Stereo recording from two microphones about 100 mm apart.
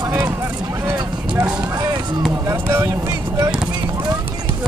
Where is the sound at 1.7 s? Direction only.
20° right (ahead or behind).